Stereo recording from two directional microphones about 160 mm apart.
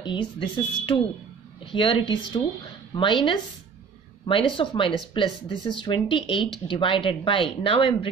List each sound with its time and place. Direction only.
0.0 s speech: 30° left (ahead or behind)